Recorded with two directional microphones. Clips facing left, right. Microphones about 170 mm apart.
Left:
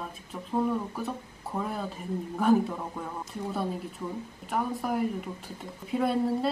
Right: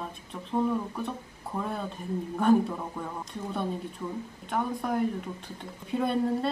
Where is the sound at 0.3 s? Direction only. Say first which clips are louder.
Even; 5° left (ahead or behind).